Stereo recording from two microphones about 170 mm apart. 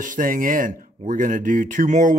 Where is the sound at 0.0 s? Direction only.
50° right (ahead or behind).